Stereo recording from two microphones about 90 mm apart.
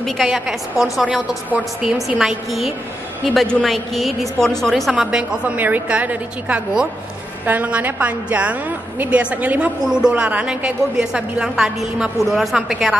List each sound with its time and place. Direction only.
0.0 s a woman's voice: centre (ahead or behind)